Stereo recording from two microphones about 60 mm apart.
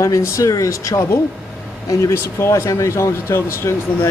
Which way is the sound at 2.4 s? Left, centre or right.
Left.